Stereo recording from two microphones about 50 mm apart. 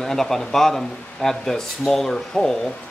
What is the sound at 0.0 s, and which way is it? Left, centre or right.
Speech, centre.